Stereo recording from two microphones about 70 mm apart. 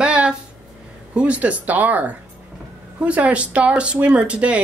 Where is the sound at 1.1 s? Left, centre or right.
Centre.